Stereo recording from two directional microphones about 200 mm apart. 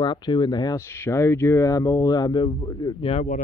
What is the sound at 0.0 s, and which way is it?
Speech, 25° left (ahead or behind).